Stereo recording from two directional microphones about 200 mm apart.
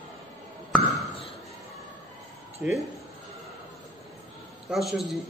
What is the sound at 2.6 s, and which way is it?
Speech, 10° right (ahead or behind).